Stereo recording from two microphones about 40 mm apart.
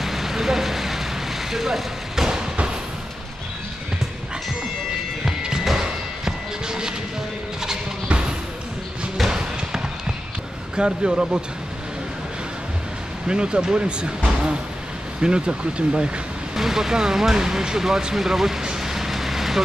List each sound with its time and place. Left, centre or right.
0.0 s vehicle: centre
5.2 s music: centre
5.8 s slam: centre
9.3 s basketball bounce: centre
10.8 s speech: right
13.3 s speech: right
16.5 s speech: centre